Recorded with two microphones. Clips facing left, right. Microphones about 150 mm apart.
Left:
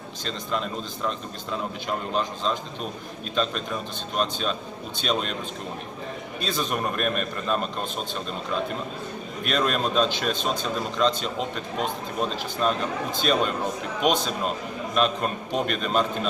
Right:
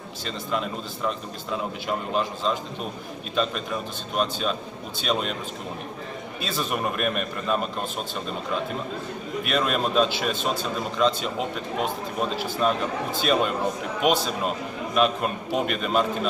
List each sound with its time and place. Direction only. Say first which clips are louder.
0.2 s a man's voice: right 1 dB; 5° right (ahead or behind)
6.4 s a man's voice: even; 5° right (ahead or behind)
9.4 s a man's voice: even; 5° right (ahead or behind)